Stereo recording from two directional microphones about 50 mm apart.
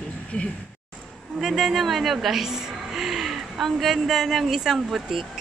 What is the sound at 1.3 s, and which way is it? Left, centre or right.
A woman's voice, centre.